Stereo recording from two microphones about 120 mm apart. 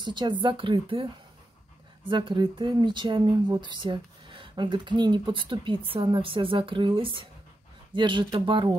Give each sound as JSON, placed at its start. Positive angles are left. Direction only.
{"t": 0.0, "sound": "speech", "side_deg": -40}